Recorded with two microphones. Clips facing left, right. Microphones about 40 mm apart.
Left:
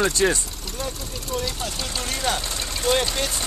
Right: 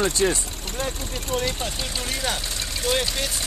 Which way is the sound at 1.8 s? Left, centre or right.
Centre.